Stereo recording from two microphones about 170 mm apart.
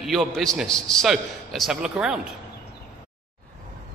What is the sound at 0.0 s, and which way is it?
A man's voice, centre (ahead or behind).